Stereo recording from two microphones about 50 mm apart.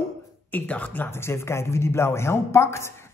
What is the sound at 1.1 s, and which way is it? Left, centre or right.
Speech, left.